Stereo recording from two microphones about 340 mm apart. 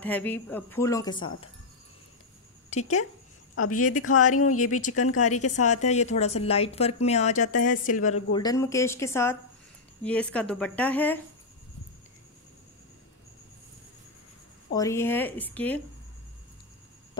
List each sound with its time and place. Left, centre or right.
0.0 s speech: centre
2.7 s speech: centre
3.5 s speech: left
5.6 s a woman's voice: left; by 11.1 s centre
14.7 s speech: centre